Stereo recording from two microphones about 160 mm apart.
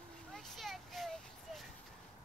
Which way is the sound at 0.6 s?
Centre (ahead or behind).